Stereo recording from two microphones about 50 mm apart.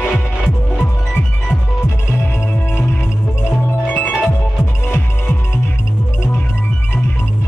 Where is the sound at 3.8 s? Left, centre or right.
Left.